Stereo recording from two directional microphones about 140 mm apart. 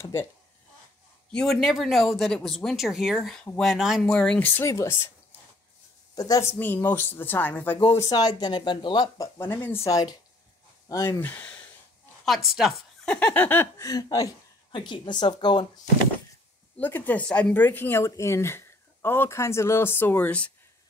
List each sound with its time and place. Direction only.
0.0 s speech: 20° left (ahead or behind)
1.3 s speech: 5° left (ahead or behind)
4.1 s speech: 10° left (ahead or behind)
6.1 s speech: 25° left (ahead or behind)
6.6 s speech: 15° left (ahead or behind)
7.8 s speech: 25° left (ahead or behind)
9.5 s speech: 15° left (ahead or behind)
11.1 s speech: 10° left (ahead or behind)
12.3 s speech: 5° right (ahead or behind); by 15.6 s 30° left (ahead or behind)
16.7 s speech: 10° left (ahead or behind)